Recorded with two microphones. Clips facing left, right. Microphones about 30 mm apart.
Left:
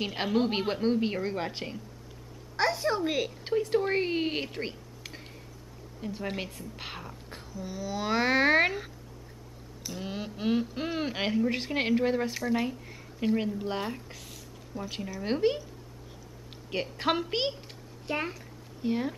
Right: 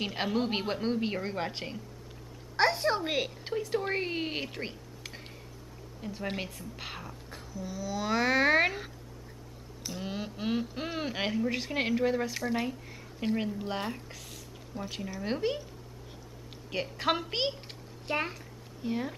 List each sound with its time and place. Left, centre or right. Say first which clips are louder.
0.0 s speech: left 3 dB; centre
2.5 s a woman's voice: right 1 dB; centre
3.7 s speech: left 3 dB; centre
5.9 s a woman's voice: left 1 dB; centre
7.2 s speech: even; centre
9.8 s speech: even; centre
12.4 s speech: left 2 dB; centre
14.7 s a woman's voice: left 1 dB; centre
15.1 s speech: left 4 dB; centre
16.7 s a woman's voice: left 1 dB; centre
18.8 s speech: left 3 dB; centre